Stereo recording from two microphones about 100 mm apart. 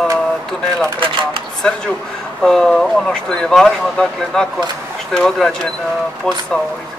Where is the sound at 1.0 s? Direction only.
60° right (ahead or behind).